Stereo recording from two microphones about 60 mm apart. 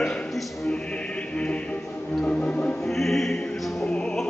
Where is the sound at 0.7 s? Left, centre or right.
Centre.